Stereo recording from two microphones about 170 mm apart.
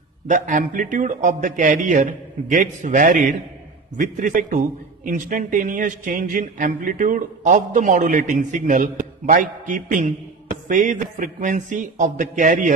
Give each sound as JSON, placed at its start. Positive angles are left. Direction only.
{"t": 0.3, "sound": "speech", "side_deg": -50}